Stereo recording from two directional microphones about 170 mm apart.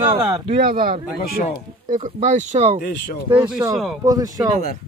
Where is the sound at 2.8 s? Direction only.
70° left (ahead or behind).